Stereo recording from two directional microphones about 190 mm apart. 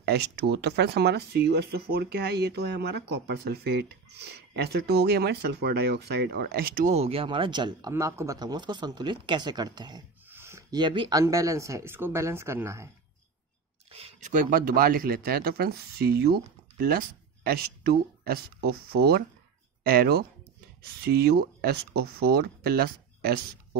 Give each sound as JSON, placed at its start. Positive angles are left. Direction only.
{"t": 0.0, "sound": "speech", "side_deg": -60}
{"t": 13.9, "sound": "a sound", "side_deg": -30}
{"t": 14.3, "sound": "speech", "side_deg": -45}